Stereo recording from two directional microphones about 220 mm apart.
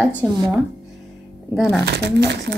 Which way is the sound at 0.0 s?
5° right (ahead or behind).